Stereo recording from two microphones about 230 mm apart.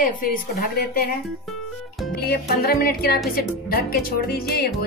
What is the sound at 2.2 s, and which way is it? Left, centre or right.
A woman's voice, left.